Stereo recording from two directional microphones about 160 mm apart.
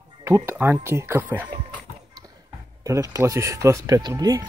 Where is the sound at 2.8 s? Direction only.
20° right (ahead or behind).